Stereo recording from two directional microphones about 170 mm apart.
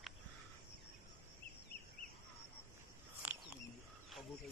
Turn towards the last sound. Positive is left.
turn(degrees=-10)  # may be behind; listen again after turning